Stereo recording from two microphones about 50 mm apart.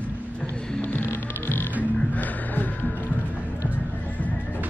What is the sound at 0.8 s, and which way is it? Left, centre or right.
Music, left.